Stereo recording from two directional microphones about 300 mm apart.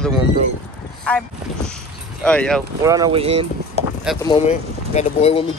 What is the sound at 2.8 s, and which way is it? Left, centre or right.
Speech, centre.